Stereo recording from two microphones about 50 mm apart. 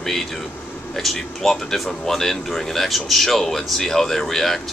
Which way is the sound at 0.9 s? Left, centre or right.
Centre.